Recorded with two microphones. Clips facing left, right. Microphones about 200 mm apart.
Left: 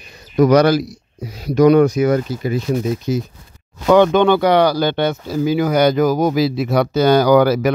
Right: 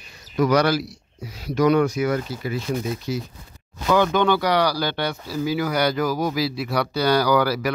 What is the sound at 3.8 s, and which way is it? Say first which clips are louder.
Speech: left 8 dB; 60° left (ahead or behind).